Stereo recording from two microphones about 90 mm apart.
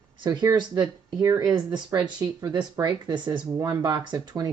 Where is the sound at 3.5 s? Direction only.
40° right (ahead or behind).